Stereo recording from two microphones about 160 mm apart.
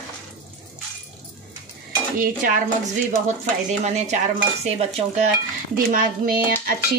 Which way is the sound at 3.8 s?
45° right (ahead or behind).